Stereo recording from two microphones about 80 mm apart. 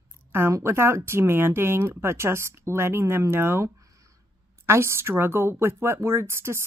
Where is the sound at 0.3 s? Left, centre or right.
Right.